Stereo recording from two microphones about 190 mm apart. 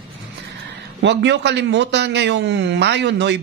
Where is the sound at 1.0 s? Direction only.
65° right (ahead or behind).